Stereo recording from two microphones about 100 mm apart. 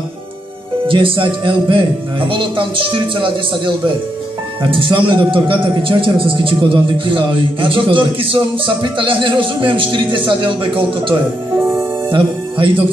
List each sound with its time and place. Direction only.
0.8 s a man's voice: 60° right (ahead or behind)